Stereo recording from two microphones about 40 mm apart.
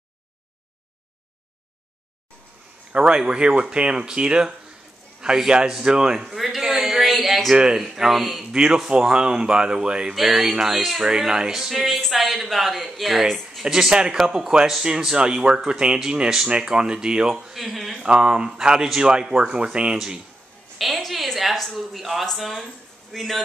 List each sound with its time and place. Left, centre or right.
2.9 s a man's voice: right
6.3 s a man's voice: centre
6.7 s a sound: centre
7.7 s speech: centre
8.5 s speech: centre
10.1 s speech: centre
11.8 s speech: centre
13.8 s speech: right
17.6 s speech: centre
18.0 s speech: right
20.7 s speech: centre